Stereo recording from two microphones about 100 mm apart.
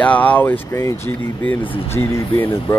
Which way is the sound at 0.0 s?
15° left (ahead or behind).